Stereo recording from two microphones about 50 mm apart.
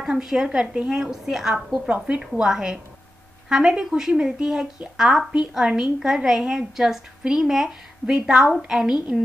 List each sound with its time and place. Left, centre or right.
0.1 s a woman's voice: centre